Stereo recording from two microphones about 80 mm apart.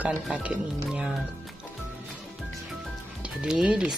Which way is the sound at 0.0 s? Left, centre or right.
Centre.